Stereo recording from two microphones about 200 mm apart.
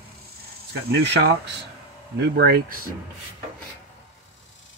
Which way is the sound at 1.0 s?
60° right (ahead or behind).